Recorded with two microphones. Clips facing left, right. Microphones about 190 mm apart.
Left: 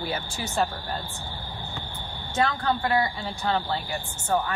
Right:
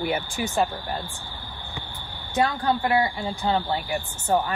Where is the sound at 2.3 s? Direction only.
10° right (ahead or behind).